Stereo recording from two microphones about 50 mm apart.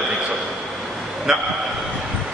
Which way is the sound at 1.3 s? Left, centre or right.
Centre.